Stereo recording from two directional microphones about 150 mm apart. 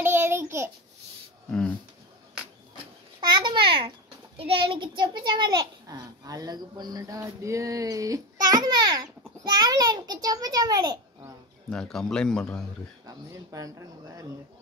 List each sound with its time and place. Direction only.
0.0 s babbling: 15° right (ahead or behind)
3.2 s babbling: 30° right (ahead or behind)
4.4 s a child's voice: 35° right (ahead or behind)
11.7 s a man's voice: 5° left (ahead or behind)
13.0 s a child's voice: 20° right (ahead or behind)